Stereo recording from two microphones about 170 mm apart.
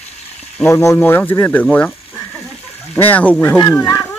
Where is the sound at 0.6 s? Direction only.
15° left (ahead or behind).